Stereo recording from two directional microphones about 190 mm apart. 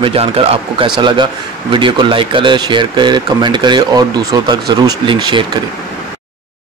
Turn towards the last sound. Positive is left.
turn(degrees=-25)  # may be behind; listen again after turning